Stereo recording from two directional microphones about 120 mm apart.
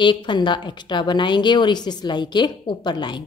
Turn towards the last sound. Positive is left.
turn(degrees=40)  # may be behind; listen again after turning